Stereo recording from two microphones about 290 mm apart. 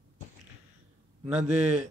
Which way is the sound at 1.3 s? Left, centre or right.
Right.